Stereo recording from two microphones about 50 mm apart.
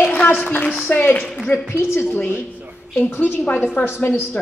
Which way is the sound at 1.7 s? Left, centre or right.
Left.